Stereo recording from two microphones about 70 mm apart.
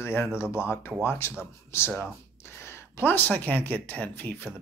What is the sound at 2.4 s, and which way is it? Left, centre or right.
Speech, left.